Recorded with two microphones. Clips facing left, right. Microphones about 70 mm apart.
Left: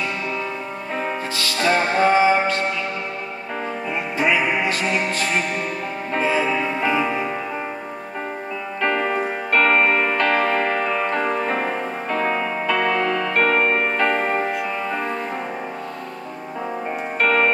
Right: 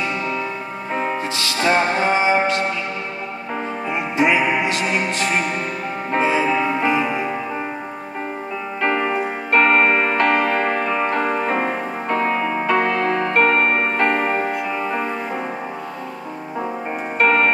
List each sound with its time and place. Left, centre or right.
1.6 s music: centre
3.9 s music: centre
4.4 s music: centre
6.1 s music: right
8.9 s music: centre
9.5 s music: right
12.6 s music: right
13.6 s music: centre
17.2 s music: right